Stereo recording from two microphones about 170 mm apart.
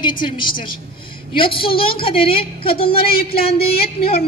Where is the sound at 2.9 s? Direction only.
65° left (ahead or behind).